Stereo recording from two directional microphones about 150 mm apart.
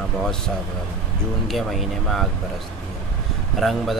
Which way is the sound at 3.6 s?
Centre (ahead or behind).